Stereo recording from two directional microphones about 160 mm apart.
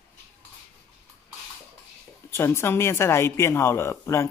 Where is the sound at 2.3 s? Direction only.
15° left (ahead or behind).